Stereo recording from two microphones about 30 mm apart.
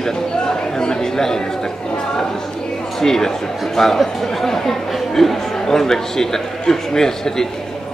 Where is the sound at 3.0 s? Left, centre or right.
Centre.